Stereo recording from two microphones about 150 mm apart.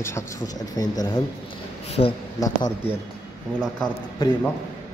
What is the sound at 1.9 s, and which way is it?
Speech, 40° left (ahead or behind).